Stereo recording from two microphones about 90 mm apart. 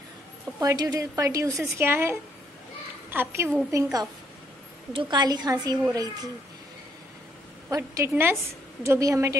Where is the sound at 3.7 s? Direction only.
45° right (ahead or behind).